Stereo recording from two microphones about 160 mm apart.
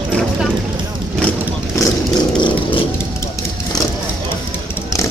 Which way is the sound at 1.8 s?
20° left (ahead or behind).